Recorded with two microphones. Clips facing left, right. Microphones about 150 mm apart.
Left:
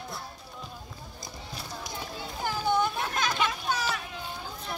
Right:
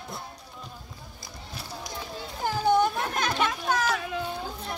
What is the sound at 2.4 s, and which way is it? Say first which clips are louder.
Children playing: right 4 dB; 40° right (ahead or behind).